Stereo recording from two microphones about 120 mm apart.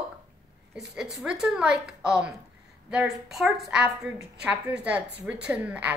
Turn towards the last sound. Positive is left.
turn(degrees=-10)  # may be behind; listen again after turning